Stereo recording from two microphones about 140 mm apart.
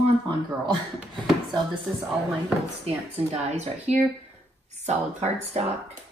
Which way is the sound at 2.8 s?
50° right (ahead or behind).